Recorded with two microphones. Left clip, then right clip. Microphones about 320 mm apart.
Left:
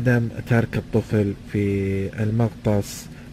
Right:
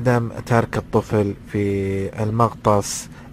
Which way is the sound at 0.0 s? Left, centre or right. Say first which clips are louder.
Right 3 dB; right.